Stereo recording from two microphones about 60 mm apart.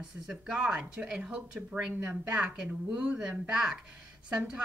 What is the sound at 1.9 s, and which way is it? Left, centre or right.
A woman's voice, right.